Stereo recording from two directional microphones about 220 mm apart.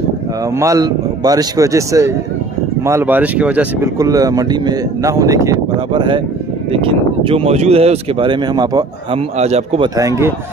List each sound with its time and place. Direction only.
0.6 s speech: 15° right (ahead or behind)
9.9 s speech: 15° right (ahead or behind)